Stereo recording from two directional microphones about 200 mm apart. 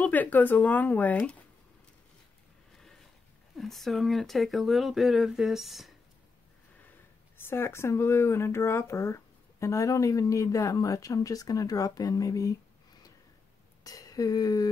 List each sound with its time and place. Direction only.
0.0 s speech: 10° left (ahead or behind)
3.5 s speech: centre (ahead or behind)
7.3 s speech: 10° left (ahead or behind)
13.8 s a sound: 20° left (ahead or behind)